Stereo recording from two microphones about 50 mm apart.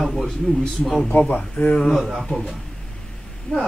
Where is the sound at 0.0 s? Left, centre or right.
Centre.